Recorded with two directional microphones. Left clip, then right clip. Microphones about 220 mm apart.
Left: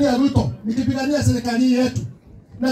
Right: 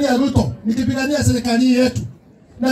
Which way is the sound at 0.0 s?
20° right (ahead or behind).